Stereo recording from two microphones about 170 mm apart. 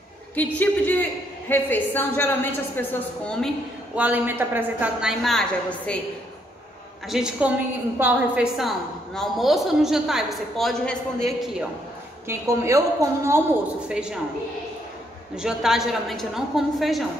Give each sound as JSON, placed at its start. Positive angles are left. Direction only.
{"t": 0.4, "sound": "a woman's voice", "side_deg": 10}
{"t": 3.9, "sound": "a woman's voice", "side_deg": -10}
{"t": 5.2, "sound": "a woman's voice", "side_deg": 5}
{"t": 7.1, "sound": "a woman's voice", "side_deg": -5}
{"t": 12.3, "sound": "a woman's voice", "side_deg": -15}
{"t": 13.8, "sound": "a woman's voice", "side_deg": -5}
{"t": 15.3, "sound": "a woman's voice", "side_deg": -5}